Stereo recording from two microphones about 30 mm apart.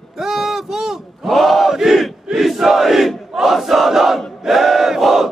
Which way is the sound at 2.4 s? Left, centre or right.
Centre.